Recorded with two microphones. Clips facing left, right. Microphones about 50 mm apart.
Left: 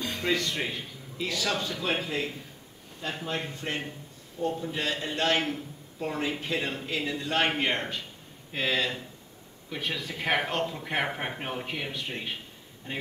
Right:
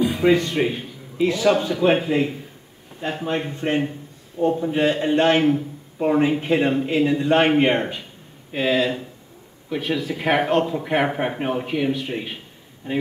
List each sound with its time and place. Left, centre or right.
0.0 s music: centre
0.3 s a man's voice: right
8.5 s speech: centre